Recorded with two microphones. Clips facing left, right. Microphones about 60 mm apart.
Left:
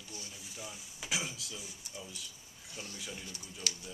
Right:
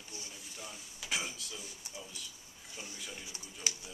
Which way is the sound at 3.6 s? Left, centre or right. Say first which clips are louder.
Even; centre.